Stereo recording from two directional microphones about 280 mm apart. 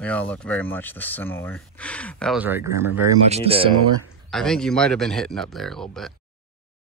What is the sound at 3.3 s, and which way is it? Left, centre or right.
Speech, right.